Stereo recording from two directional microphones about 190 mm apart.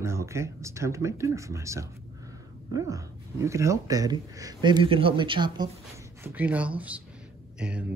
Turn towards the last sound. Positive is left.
turn(degrees=-5)  # may be behind; listen again after turning